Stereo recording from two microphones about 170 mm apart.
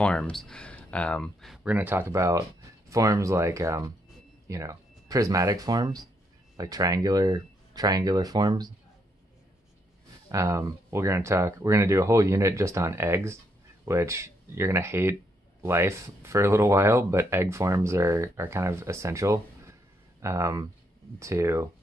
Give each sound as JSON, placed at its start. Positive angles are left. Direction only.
{"t": 0.0, "sound": "speech", "side_deg": 5}
{"t": 10.3, "sound": "speech", "side_deg": -20}